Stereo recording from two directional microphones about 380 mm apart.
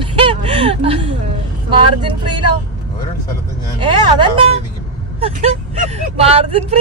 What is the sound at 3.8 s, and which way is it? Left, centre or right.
Speech, centre.